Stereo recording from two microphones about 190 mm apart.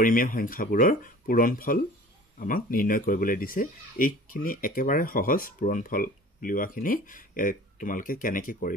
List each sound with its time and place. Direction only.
0.0 s speech: 45° left (ahead or behind)